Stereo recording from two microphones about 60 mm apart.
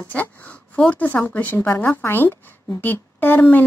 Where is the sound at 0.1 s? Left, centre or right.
Left.